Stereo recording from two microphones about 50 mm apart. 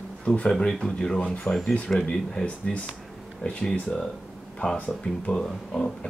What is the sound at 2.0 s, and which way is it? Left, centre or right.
Speech, centre.